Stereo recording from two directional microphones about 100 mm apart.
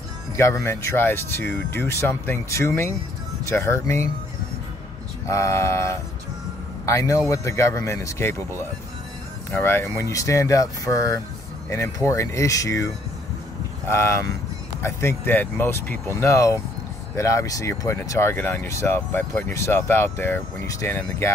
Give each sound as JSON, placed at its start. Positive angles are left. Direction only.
{"t": 0.4, "sound": "speech", "side_deg": 25}
{"t": 5.2, "sound": "speech", "side_deg": 30}
{"t": 9.6, "sound": "speech", "side_deg": 25}